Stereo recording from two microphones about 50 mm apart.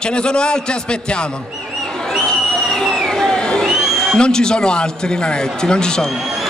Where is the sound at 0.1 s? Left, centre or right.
Centre.